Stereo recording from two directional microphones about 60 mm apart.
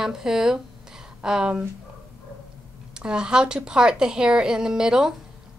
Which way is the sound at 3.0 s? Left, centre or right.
Centre.